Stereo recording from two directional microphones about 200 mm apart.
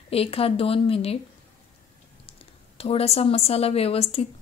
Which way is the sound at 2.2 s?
30° left (ahead or behind).